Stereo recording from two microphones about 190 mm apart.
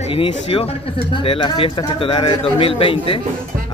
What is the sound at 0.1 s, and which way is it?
Speech, 30° left (ahead or behind).